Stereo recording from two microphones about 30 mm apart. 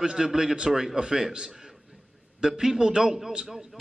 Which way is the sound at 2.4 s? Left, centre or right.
Centre.